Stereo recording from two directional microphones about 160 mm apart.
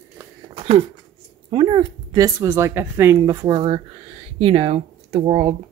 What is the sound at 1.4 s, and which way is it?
A woman's voice, 30° right (ahead or behind).